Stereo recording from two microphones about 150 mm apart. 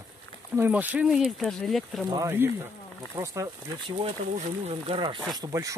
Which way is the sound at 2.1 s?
15° right (ahead or behind).